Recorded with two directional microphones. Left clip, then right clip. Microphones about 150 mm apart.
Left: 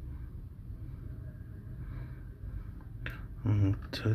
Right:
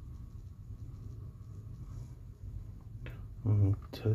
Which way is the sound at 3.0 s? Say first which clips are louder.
Left 6 dB; 20° right (ahead or behind).